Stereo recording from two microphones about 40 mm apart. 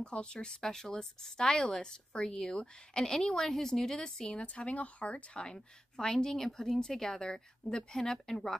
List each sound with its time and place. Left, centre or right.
0.0 s a woman's voice: left
4.4 s speech: left
5.9 s a woman's voice: centre